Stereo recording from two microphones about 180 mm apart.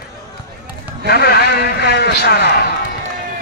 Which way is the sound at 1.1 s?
60° left (ahead or behind).